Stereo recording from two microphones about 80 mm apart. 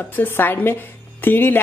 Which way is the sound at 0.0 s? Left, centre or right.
Left.